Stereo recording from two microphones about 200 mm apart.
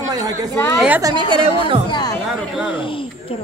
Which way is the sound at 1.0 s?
25° right (ahead or behind).